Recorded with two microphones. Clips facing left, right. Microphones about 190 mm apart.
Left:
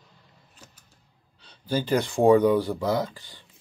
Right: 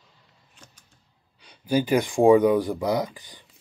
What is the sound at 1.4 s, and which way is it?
Speech, 15° right (ahead or behind).